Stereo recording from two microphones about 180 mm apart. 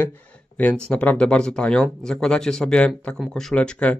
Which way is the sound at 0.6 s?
10° left (ahead or behind).